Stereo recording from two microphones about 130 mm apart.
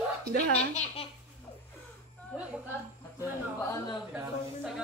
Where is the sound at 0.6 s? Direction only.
55° left (ahead or behind).